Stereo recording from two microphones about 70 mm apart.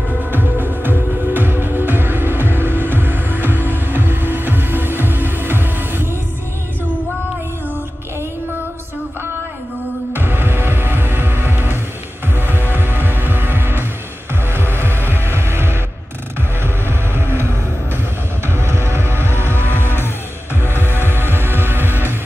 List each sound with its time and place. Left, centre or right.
0.3 s music: right
10.1 s music: right
14.5 s vehicle: right
15.2 s music: right
17.1 s music: right
18.5 s music: right
19.2 s vehicle: left
21.1 s music: right